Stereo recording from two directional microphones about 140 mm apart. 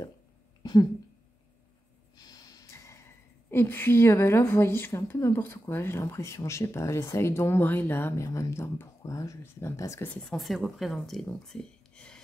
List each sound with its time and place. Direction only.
2.1 s speech: 25° left (ahead or behind)
10.3 s speech: centre (ahead or behind)